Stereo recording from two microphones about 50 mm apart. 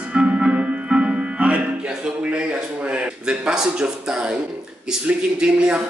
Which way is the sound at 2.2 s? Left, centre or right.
Right.